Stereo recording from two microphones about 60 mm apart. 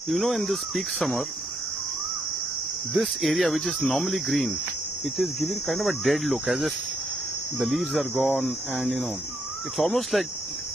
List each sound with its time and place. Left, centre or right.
0.1 s speech: centre
2.9 s speech: centre
8.2 s cricket: centre
9.8 s speech: centre